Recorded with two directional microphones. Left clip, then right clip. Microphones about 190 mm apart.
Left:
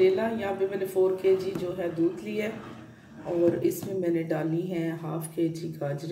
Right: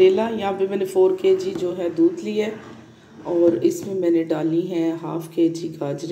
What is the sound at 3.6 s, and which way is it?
A woman's voice, 15° right (ahead or behind).